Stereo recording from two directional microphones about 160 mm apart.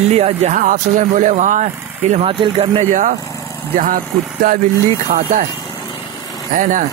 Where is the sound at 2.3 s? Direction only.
30° right (ahead or behind).